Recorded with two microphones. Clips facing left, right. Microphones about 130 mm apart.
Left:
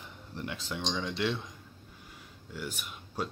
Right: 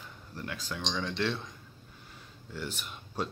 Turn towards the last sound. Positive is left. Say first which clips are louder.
# right 1 dB
turn(degrees=10)  # may be behind; listen again after turning